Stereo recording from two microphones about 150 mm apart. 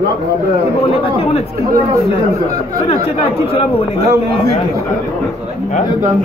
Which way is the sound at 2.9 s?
40° left (ahead or behind).